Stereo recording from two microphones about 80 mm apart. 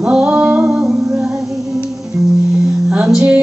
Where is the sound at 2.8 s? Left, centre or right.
Centre.